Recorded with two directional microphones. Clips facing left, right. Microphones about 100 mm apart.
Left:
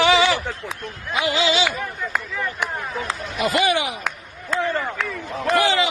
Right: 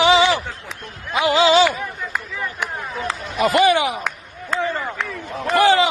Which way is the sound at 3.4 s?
40° right (ahead or behind).